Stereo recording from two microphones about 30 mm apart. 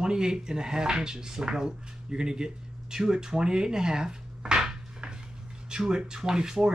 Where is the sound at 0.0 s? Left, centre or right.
Right.